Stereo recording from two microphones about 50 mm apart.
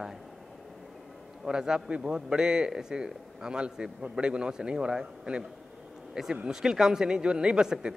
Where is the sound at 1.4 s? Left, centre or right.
Centre.